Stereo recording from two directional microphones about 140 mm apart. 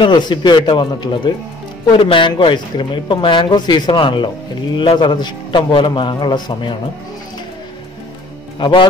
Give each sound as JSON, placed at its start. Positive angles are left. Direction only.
{"t": 0.0, "sound": "speech", "side_deg": 35}
{"t": 8.5, "sound": "speech", "side_deg": 35}